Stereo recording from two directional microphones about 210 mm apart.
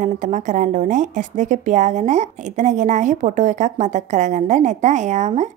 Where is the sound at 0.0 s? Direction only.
35° right (ahead or behind).